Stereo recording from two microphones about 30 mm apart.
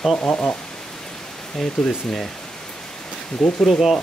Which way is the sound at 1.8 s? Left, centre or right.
Centre.